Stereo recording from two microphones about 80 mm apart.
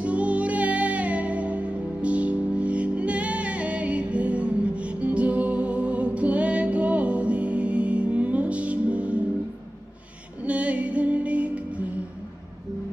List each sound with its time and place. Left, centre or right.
0.0 s music: centre
10.4 s music: centre